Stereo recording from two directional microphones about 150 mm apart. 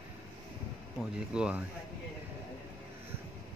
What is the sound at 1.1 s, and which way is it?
Speech, 5° right (ahead or behind).